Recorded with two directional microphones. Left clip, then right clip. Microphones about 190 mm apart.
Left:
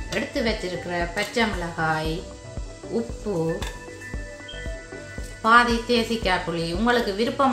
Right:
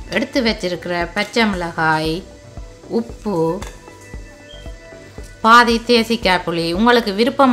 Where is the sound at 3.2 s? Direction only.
65° right (ahead or behind).